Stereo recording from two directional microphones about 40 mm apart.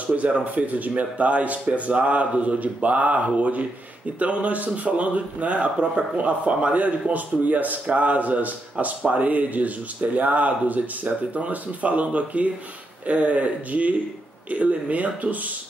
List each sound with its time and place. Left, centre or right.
0.0 s speech: right